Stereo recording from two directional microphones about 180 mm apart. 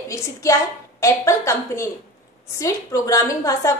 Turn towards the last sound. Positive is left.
turn(degrees=20)  # may be behind; listen again after turning